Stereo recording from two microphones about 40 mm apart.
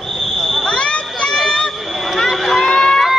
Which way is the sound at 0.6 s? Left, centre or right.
Left.